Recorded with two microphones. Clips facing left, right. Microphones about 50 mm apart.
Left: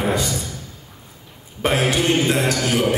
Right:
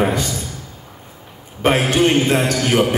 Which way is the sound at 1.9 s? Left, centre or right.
Right.